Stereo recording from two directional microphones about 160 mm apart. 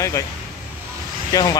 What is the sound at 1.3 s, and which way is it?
Speech, 25° left (ahead or behind).